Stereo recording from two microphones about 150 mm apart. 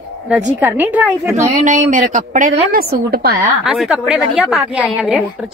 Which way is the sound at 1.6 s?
60° right (ahead or behind).